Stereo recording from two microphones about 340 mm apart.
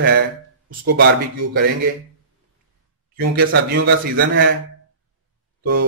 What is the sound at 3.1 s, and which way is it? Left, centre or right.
A man's voice, right.